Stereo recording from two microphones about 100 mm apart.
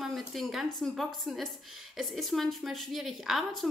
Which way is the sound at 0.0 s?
Centre (ahead or behind).